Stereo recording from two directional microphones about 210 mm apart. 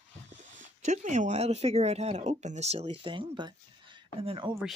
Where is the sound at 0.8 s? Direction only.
35° right (ahead or behind).